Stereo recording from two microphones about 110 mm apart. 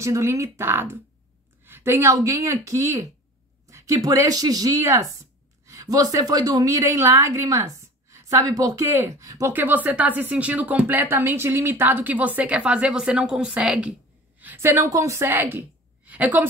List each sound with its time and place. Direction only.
0.0 s a woman's voice: 25° right (ahead or behind)
9.5 s a woman's voice: 15° right (ahead or behind)